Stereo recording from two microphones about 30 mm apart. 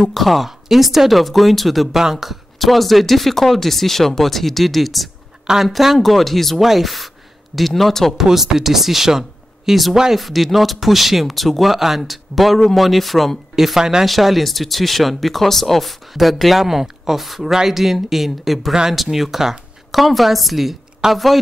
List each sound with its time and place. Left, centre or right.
0.1 s speech: centre
2.0 s speech: centre
2.6 s speech: centre
5.9 s speech: centre
8.2 s speech: centre
10.1 s speech: centre
13.7 s speech: centre
14.0 s speech: centre
19.9 s speech: centre